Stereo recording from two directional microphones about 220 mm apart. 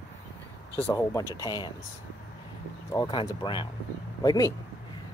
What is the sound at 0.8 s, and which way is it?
Speech, 15° left (ahead or behind).